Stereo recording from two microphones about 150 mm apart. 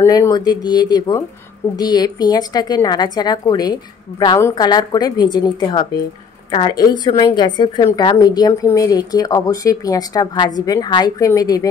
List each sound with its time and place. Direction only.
0.0 s a woman's voice: 25° left (ahead or behind)